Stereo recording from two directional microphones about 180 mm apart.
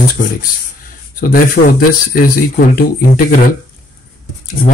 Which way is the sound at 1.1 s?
50° left (ahead or behind).